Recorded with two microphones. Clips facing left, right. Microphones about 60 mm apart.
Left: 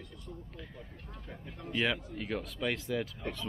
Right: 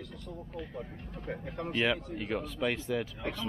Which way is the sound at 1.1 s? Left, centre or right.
Right.